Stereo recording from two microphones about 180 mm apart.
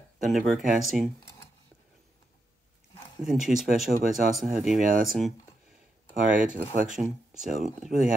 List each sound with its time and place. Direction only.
0.2 s speech: centre (ahead or behind)
3.3 s speech: centre (ahead or behind)
4.8 s speech: 50° right (ahead or behind)
6.3 s speech: 45° right (ahead or behind)
7.0 s speech: centre (ahead or behind)